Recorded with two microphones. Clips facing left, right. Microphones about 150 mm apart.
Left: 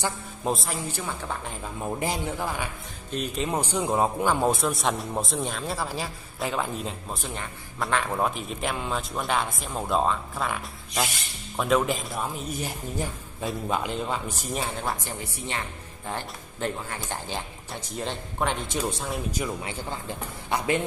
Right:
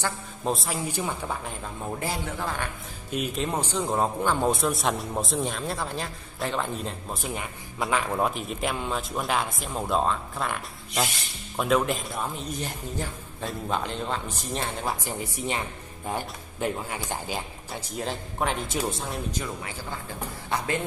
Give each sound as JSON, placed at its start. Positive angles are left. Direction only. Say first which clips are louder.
{"t": 0.5, "sound": "a man's voice", "louder": "even", "side_deg": 0}
{"t": 2.0, "sound": "a man's voice", "louder": "left 2 dB", "side_deg": 15}
{"t": 3.1, "sound": "speech", "louder": "right 1 dB", "side_deg": -5}
{"t": 3.4, "sound": "a man's voice", "louder": "left 1 dB", "side_deg": 10}
{"t": 15.0, "sound": "a man's voice", "louder": "right 4 dB", "side_deg": -15}
{"t": 19.3, "sound": "a man's voice", "louder": "left 3 dB", "side_deg": 10}